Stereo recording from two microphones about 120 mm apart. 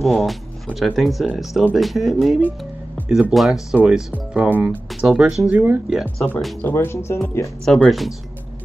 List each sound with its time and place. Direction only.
0.0 s speech: centre (ahead or behind); by 5.8 s 15° right (ahead or behind)
5.9 s speech: centre (ahead or behind)
6.6 s speech: 20° left (ahead or behind)
7.6 s speech: centre (ahead or behind)